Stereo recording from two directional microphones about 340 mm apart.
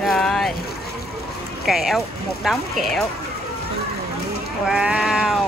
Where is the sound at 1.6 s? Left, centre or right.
Centre.